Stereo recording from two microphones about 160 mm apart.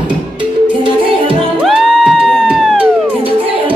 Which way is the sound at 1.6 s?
Centre (ahead or behind).